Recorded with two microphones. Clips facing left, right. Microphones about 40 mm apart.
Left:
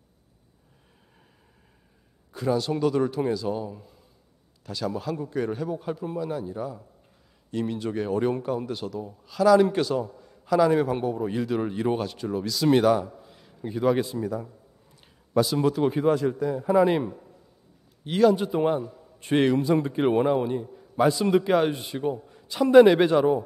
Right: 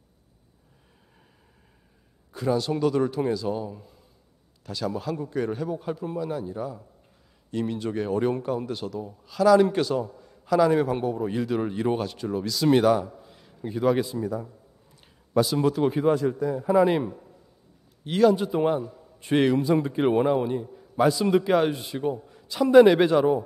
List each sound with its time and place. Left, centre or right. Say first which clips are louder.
2.3 s a man's voice: even; centre